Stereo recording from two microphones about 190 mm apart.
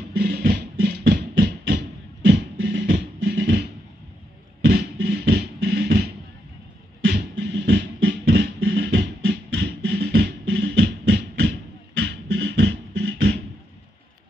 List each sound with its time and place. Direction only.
0.2 s music: 60° right (ahead or behind)
1.8 s music: 65° right (ahead or behind)
4.6 s music: 65° right (ahead or behind)
7.1 s music: 65° right (ahead or behind)
12.0 s beatboxing: 75° right (ahead or behind)